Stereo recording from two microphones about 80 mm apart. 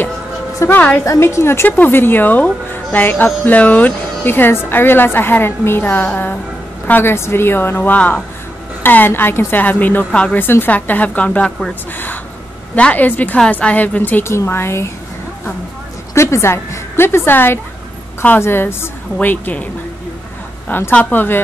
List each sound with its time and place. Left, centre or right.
0.7 s a woman's voice: left
1.0 s a woman's voice: left; by 11.7 s centre
12.7 s a woman's voice: centre
16.2 s a woman's voice: left